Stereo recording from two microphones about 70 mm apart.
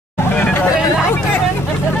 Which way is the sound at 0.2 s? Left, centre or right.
Left.